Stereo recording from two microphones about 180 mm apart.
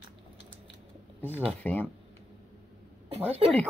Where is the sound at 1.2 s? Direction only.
10° right (ahead or behind).